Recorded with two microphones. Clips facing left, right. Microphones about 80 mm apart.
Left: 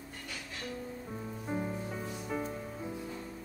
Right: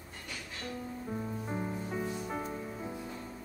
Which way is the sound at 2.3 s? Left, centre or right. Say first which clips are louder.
Left 1 dB; centre.